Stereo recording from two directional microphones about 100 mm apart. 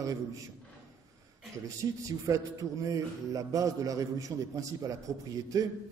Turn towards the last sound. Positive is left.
turn(degrees=-35)  # may be behind; listen again after turning